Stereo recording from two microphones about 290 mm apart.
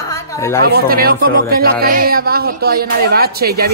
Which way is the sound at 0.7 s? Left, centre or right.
Right.